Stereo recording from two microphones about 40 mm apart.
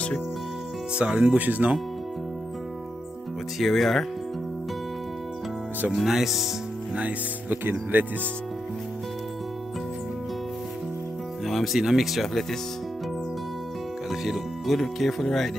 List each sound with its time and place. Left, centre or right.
0.9 s speech: right
1.3 s speech: right
3.5 s speech: centre
6.0 s speech: centre
7.6 s speech: right
11.4 s music: centre
11.8 s speech: centre
14.2 s speech: centre